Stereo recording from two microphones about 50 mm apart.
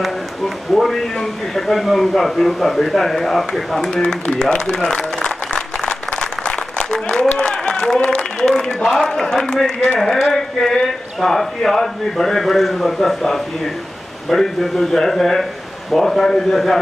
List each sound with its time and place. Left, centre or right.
0.7 s speech: centre
4.7 s applause: centre
9.0 s a man's voice: centre